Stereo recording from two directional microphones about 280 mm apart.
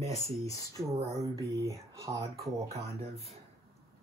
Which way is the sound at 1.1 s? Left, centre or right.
Centre.